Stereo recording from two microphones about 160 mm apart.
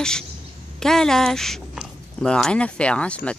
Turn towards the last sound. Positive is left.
turn(degrees=10)  # may be behind; listen again after turning